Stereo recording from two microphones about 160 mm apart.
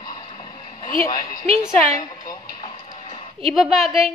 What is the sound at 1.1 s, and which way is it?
Speech, 25° left (ahead or behind).